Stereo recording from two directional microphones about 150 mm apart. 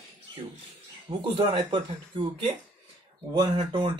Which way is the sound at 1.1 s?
30° right (ahead or behind).